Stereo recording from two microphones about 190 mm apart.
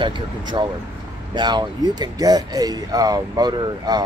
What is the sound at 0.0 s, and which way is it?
Speech, 25° right (ahead or behind).